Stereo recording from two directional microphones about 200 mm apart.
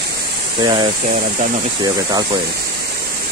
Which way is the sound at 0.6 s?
25° right (ahead or behind).